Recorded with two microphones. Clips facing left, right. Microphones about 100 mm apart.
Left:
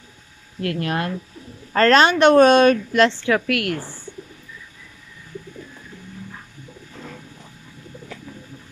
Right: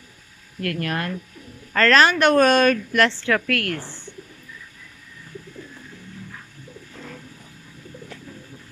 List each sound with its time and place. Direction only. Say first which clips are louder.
0.6 s a woman's voice: left 2 dB; 20° left (ahead or behind)